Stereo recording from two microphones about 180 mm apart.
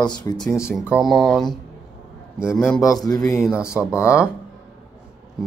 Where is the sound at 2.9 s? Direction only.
20° left (ahead or behind).